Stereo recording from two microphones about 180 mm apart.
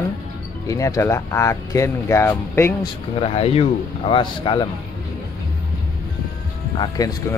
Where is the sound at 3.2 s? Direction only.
35° left (ahead or behind).